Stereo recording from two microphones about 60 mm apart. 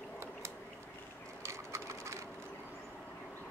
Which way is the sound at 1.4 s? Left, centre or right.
Right.